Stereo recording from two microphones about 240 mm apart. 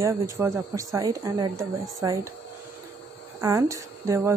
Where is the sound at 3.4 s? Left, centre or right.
Centre.